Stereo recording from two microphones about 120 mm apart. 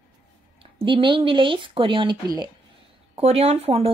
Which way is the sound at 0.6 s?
45° right (ahead or behind).